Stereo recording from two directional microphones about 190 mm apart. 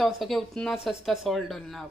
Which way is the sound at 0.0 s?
Centre (ahead or behind).